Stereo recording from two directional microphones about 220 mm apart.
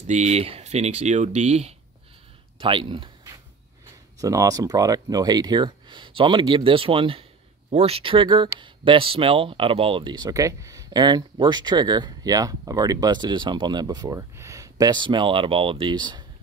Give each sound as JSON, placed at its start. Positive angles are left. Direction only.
{"t": 0.0, "sound": "speech", "side_deg": -30}